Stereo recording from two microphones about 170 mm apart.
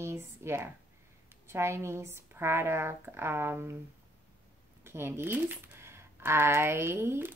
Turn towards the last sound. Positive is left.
turn(degrees=-15)  # may be behind; listen again after turning